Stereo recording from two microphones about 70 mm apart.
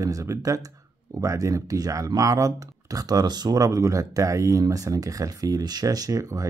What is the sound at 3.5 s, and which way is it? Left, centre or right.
Speech, right.